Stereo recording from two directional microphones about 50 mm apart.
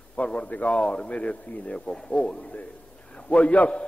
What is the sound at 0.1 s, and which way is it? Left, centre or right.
A man's voice, left.